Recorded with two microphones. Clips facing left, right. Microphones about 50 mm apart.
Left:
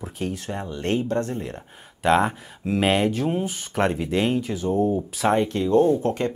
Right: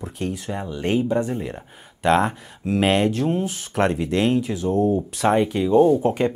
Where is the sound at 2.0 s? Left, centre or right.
Centre.